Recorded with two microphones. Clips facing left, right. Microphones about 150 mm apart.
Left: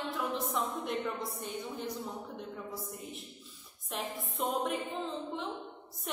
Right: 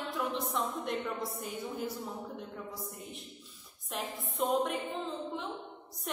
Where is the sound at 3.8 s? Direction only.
Centre (ahead or behind).